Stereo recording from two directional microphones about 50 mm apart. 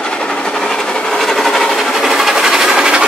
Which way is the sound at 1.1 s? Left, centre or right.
Centre.